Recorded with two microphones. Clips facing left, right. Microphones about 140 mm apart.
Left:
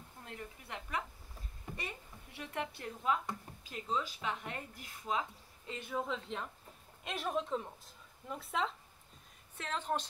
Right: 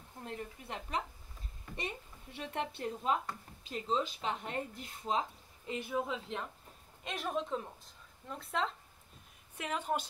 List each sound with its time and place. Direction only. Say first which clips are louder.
0.2 s a woman's voice: right 5 dB; 25° right (ahead or behind)
2.3 s a woman's voice: right 2 dB; 25° right (ahead or behind)
5.7 s a woman's voice: right 2 dB; 10° right (ahead or behind)
9.6 s a woman's voice: right 2 dB; 10° right (ahead or behind)